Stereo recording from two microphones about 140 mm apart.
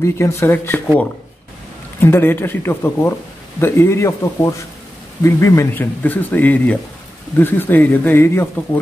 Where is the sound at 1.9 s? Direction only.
15° left (ahead or behind).